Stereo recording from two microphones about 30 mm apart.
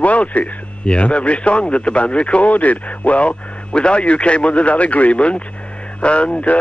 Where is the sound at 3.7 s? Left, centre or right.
Left.